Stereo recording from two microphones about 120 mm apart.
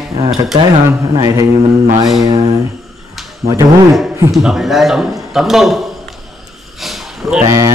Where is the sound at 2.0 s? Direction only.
30° right (ahead or behind).